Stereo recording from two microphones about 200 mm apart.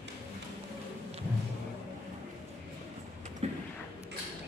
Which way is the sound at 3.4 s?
35° right (ahead or behind).